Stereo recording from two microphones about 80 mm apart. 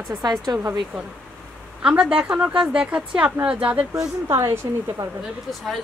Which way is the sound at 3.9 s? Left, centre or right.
Right.